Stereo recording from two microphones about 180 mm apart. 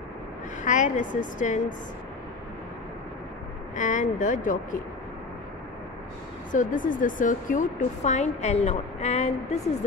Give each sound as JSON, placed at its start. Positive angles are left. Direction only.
{"t": 0.7, "sound": "speech", "side_deg": 45}
{"t": 3.7, "sound": "speech", "side_deg": 45}
{"t": 6.5, "sound": "speech", "side_deg": 45}